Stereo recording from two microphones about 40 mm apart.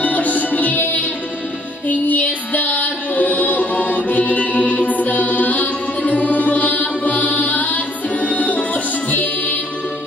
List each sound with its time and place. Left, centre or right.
0.0 s music: left